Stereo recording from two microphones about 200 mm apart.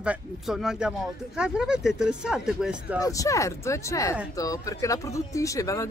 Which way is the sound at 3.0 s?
15° left (ahead or behind).